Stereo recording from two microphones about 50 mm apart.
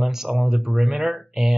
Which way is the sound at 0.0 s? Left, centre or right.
Centre.